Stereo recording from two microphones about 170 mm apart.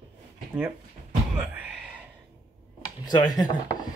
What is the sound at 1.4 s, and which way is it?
Speech, 10° right (ahead or behind).